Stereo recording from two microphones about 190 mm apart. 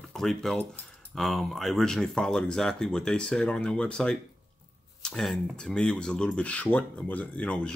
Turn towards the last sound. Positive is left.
turn(degrees=5)  # may be behind; listen again after turning